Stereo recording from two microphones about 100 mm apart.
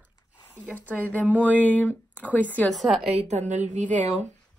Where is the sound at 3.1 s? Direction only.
90° right.